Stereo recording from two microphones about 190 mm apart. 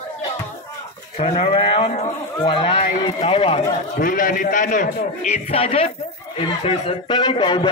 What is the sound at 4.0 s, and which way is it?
A man's voice, 45° left (ahead or behind).